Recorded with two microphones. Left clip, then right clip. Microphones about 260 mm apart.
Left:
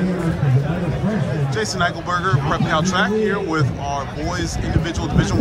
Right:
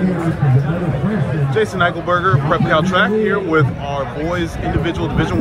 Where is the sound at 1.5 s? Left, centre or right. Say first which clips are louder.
Right 5 dB; centre.